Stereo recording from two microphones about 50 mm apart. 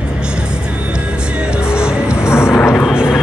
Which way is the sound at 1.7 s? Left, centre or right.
Centre.